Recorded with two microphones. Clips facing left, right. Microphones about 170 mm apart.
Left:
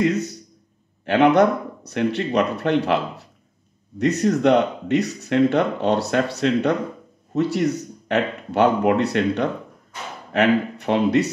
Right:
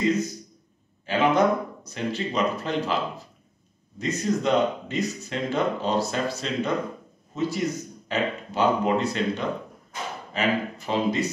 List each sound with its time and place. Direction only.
0.0 s speech: 70° left (ahead or behind)